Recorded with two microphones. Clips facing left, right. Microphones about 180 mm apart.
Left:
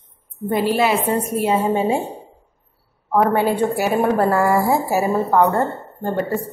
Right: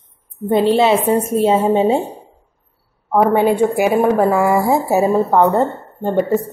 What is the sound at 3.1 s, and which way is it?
A woman's voice, 10° right (ahead or behind).